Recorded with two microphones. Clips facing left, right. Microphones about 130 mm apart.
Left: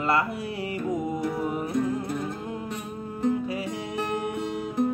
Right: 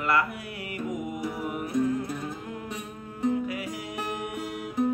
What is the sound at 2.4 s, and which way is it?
Music, 30° left (ahead or behind).